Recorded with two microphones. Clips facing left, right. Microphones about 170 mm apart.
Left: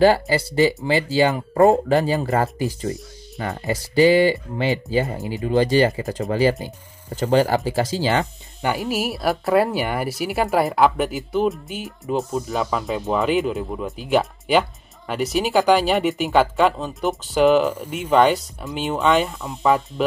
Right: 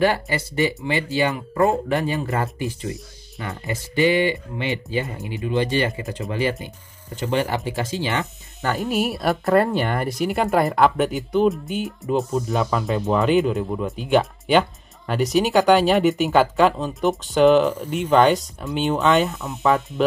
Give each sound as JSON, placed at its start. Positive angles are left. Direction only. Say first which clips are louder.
{"t": 0.0, "sound": "speech", "louder": "left 5 dB", "side_deg": 30}
{"t": 8.7, "sound": "speech", "louder": "right 1 dB", "side_deg": 0}